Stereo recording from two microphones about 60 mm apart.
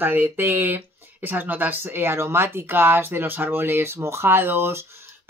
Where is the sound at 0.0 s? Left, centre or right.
Right.